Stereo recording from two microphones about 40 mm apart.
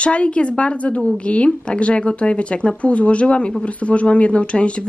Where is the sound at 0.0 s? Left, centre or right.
Left.